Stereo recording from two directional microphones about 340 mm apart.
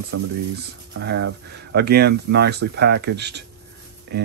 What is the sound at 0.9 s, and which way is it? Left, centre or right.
Speech, right.